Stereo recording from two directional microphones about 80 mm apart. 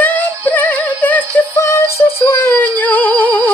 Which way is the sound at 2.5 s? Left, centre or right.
Left.